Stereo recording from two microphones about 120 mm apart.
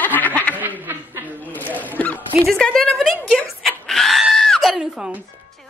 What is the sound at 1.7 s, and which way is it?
Dog, 15° left (ahead or behind).